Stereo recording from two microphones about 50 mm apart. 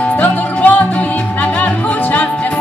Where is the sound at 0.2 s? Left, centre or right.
Left.